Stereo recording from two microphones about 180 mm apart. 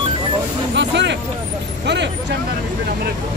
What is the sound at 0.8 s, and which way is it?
Speech, 75° right (ahead or behind).